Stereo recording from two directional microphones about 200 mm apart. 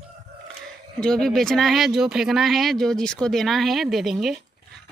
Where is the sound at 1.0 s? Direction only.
Centre (ahead or behind).